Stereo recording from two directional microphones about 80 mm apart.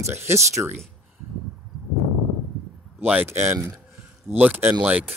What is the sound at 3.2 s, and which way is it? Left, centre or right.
Speech, right.